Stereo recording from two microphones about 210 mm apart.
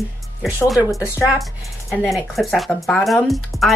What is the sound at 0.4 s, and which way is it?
Speech, 5° right (ahead or behind).